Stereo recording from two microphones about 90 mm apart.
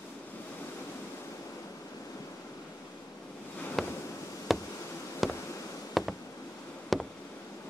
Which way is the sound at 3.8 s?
Centre (ahead or behind).